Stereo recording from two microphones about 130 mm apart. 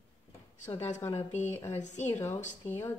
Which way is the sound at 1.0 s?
15° left (ahead or behind).